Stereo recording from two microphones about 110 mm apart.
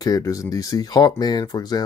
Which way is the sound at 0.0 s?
30° left (ahead or behind).